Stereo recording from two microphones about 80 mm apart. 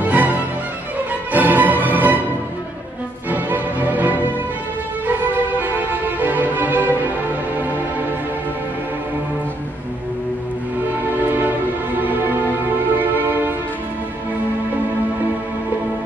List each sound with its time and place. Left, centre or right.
0.0 s music: centre
3.3 s music: right
5.6 s music: right
11.2 s music: right